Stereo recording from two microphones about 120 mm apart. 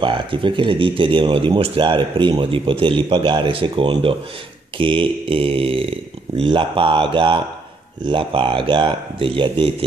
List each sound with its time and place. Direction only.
0.0 s speech: 45° right (ahead or behind)